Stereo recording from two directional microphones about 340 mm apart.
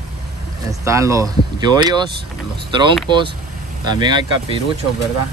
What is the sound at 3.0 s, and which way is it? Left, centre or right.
Speech, centre.